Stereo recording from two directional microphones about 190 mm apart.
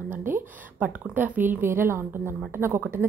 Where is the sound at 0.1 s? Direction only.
10° right (ahead or behind).